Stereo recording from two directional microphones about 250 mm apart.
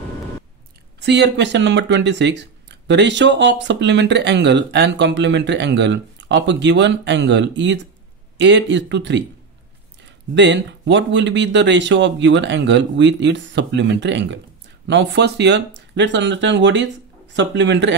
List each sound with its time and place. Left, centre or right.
1.0 s speech: right